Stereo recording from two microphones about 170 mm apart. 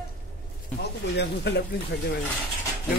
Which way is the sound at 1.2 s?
85° left.